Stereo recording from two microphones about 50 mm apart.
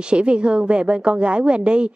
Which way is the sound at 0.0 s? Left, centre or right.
Right.